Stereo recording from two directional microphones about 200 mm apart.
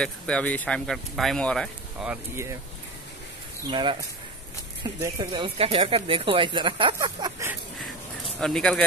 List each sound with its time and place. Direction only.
0.0 s speech: 5° left (ahead or behind)
2.0 s speech: 15° right (ahead or behind)
3.7 s speech: 25° right (ahead or behind)
5.0 s speech: 25° right (ahead or behind)
8.4 s speech: 5° left (ahead or behind)